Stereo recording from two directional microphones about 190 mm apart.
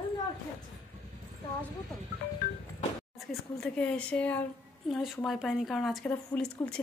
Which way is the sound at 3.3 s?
5° left (ahead or behind).